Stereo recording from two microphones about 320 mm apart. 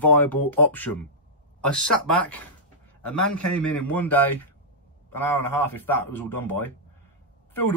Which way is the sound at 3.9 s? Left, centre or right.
Centre.